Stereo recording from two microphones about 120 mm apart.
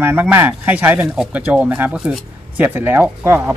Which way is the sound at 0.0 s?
15° right (ahead or behind).